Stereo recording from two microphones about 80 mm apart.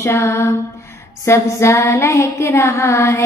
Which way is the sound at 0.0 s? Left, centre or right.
Left.